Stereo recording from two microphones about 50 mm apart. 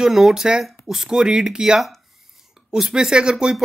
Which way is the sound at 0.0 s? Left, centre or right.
Centre.